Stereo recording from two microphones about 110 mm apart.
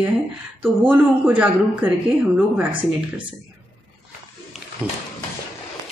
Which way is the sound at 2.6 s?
15° right (ahead or behind).